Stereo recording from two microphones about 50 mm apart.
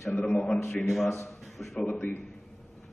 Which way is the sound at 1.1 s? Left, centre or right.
Left.